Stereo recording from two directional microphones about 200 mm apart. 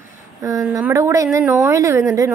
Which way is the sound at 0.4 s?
15° right (ahead or behind).